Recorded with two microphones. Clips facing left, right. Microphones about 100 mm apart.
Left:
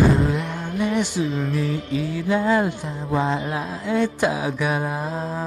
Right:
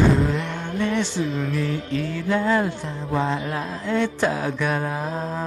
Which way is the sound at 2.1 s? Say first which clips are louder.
Left 1 dB; 10° left (ahead or behind).